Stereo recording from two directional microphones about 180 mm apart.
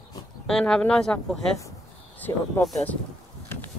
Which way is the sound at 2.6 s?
5° left (ahead or behind).